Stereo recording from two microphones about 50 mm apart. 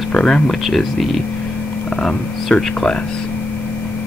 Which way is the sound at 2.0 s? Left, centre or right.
Centre.